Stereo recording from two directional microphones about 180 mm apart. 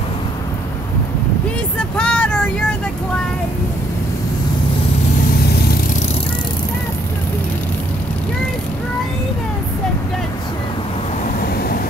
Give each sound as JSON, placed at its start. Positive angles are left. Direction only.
{"t": 1.8, "sound": "vehicle", "side_deg": 5}
{"t": 5.3, "sound": "vehicle", "side_deg": 60}
{"t": 11.4, "sound": "vehicle", "side_deg": 60}